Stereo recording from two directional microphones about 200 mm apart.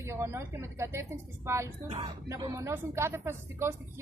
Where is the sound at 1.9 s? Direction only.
30° right (ahead or behind).